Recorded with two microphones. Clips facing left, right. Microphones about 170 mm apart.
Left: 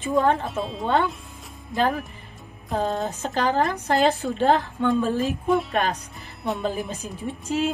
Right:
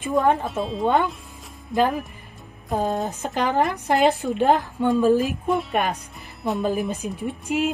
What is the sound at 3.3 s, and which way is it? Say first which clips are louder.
Speech: right 1 dB; 15° right (ahead or behind).